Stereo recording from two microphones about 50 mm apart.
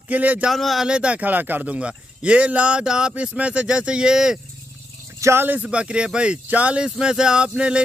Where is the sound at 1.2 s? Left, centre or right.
Right; by 4.4 s centre.